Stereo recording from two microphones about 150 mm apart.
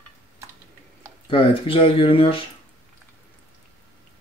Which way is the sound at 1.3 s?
35° left (ahead or behind).